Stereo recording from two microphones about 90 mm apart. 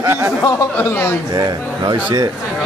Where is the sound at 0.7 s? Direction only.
20° left (ahead or behind).